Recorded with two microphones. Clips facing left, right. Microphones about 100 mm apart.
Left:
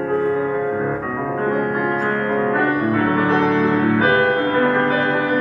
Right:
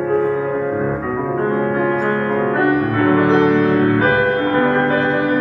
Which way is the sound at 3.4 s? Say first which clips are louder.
Right 3 dB; 5° right (ahead or behind).